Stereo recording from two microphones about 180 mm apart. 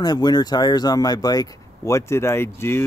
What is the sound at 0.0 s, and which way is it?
Speech, 20° left (ahead or behind).